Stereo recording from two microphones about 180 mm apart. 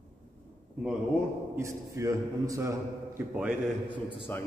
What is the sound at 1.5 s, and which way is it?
A man's voice, 15° right (ahead or behind).